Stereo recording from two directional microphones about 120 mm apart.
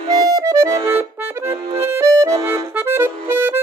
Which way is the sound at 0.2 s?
30° right (ahead or behind).